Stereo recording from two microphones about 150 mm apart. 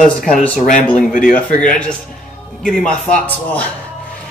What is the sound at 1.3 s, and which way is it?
Speech, 10° left (ahead or behind).